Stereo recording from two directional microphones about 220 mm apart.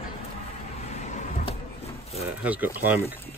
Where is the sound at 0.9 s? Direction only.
30° left (ahead or behind).